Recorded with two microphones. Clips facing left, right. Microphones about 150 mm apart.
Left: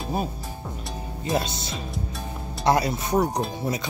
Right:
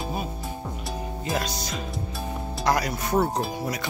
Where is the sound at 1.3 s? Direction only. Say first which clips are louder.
Left 3 dB; 25° left (ahead or behind).